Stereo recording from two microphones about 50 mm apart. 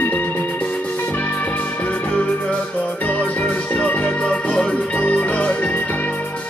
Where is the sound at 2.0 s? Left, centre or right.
Left.